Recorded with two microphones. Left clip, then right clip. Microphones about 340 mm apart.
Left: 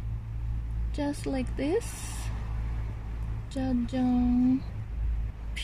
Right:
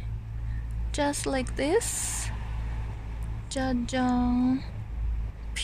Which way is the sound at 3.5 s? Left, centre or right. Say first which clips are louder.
Right 2 dB; centre.